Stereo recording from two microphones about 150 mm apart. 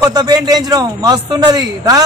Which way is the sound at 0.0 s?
25° right (ahead or behind).